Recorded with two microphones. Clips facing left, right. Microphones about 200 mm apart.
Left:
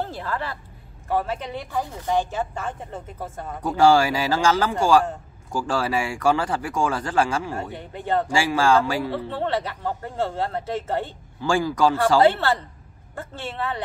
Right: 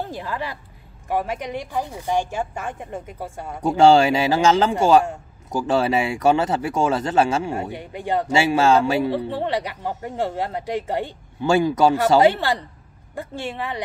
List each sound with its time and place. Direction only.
0.0 s a man's voice: 15° right (ahead or behind)
3.6 s speech: 25° right (ahead or behind)
7.5 s a man's voice: 10° right (ahead or behind)